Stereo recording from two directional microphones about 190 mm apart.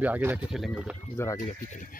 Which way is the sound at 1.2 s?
15° left (ahead or behind).